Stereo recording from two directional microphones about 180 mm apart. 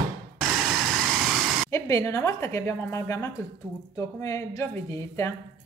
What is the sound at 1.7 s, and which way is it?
A woman's voice, 15° left (ahead or behind).